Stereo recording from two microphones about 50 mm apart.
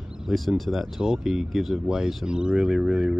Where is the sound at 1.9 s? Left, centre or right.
Centre.